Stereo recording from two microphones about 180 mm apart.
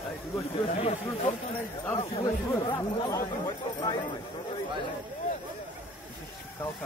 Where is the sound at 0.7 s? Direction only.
40° left (ahead or behind).